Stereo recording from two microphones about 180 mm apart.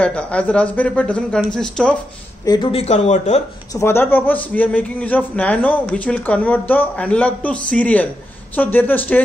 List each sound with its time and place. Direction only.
0.0 s a man's voice: 5° left (ahead or behind)
2.4 s speech: 20° left (ahead or behind)
2.7 s speech: 35° left (ahead or behind)
3.7 s a man's voice: 15° left (ahead or behind)